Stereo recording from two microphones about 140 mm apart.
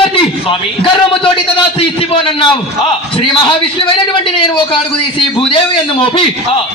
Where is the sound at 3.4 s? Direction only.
40° left (ahead or behind).